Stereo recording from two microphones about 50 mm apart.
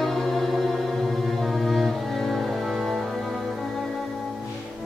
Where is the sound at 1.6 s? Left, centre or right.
Centre.